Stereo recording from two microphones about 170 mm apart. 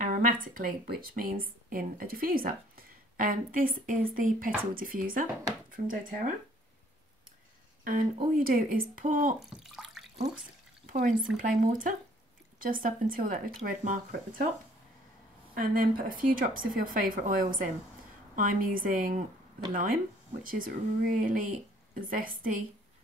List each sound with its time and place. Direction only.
0.0 s speech: 55° right (ahead or behind)
7.8 s speech: 55° right (ahead or behind)
9.4 s speech: centre (ahead or behind)
10.9 s speech: 55° right (ahead or behind)
15.5 s speech: 55° right (ahead or behind)